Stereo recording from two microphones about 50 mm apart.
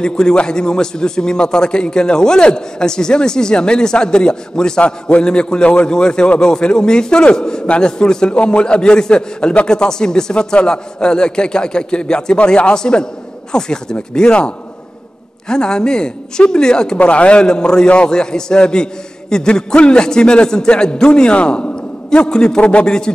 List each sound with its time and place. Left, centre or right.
0.0 s a man's voice: centre